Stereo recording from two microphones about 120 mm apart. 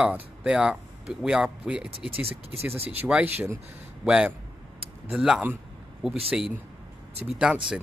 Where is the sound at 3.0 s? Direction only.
15° right (ahead or behind).